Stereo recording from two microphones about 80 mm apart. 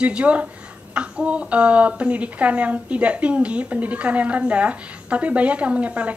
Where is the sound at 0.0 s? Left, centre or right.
Centre.